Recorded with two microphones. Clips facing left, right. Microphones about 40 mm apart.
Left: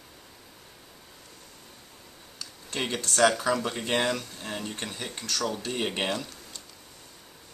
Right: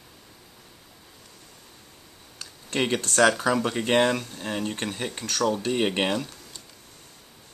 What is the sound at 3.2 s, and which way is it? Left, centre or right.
Speech, centre.